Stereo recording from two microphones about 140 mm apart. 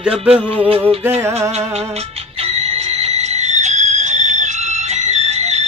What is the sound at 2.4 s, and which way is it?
Music, 45° right (ahead or behind).